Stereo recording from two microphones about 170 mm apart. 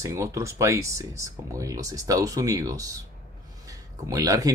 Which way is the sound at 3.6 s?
20° right (ahead or behind).